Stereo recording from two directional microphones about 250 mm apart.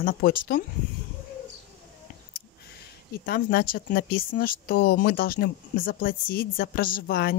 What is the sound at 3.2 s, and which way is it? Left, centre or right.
Speech, left.